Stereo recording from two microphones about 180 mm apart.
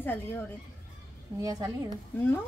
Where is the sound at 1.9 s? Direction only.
10° left (ahead or behind).